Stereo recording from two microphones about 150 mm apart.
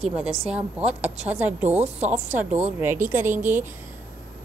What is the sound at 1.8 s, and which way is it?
Speech, 50° right (ahead or behind).